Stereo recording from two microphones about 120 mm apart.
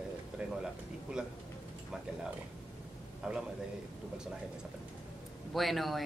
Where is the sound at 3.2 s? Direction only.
5° right (ahead or behind).